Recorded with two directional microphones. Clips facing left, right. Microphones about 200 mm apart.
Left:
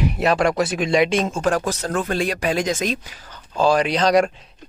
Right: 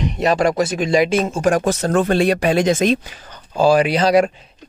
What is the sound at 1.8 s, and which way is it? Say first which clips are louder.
Speech: right 6 dB; 60° right (ahead or behind).